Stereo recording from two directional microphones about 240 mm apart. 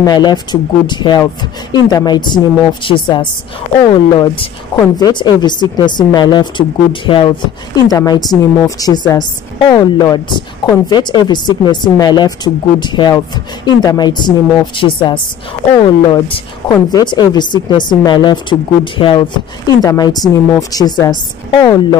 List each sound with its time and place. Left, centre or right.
0.0 s a woman's voice: centre